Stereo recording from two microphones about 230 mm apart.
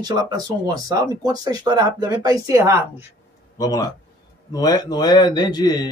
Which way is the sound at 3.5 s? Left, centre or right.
Centre.